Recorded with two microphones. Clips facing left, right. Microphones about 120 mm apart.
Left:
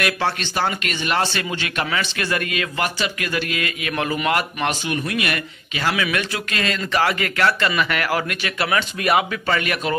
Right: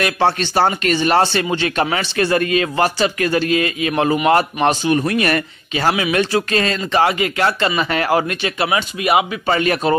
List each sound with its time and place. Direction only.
0.0 s speech: 30° right (ahead or behind); by 9.4 s 15° right (ahead or behind)
9.5 s speech: 30° right (ahead or behind)